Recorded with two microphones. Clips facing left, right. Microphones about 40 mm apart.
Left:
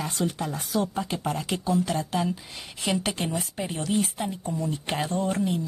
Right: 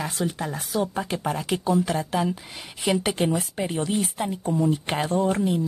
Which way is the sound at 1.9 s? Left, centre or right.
Centre.